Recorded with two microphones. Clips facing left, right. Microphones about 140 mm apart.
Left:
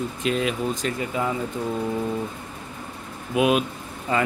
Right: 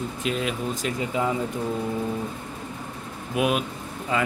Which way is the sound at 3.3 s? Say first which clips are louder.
Left 4 dB; centre (ahead or behind).